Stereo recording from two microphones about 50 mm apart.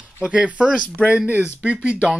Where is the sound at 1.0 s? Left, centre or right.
Left.